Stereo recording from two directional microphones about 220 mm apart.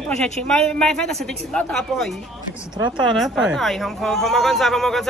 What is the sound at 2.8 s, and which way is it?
Speech, 20° right (ahead or behind).